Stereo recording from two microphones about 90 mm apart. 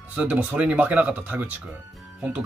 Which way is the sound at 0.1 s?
15° right (ahead or behind).